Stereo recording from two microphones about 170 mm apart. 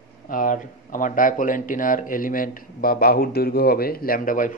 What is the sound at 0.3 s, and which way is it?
Speech, 55° left (ahead or behind).